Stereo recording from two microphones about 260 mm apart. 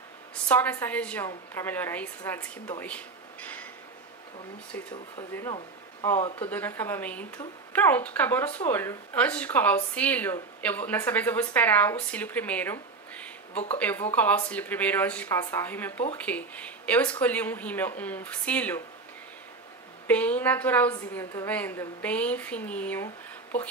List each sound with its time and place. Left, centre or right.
0.5 s speech: centre
2.8 s a sound: centre
4.7 s speech: centre
6.1 s speech: left
6.4 s speech: centre
20.1 s speech: centre